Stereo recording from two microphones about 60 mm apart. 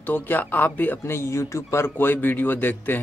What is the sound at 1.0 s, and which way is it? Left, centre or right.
Speech, left.